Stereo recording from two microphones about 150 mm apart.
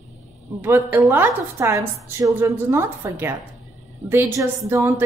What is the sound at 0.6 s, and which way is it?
A woman's voice, 15° right (ahead or behind).